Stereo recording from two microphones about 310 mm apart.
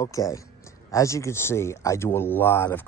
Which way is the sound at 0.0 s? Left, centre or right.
Centre.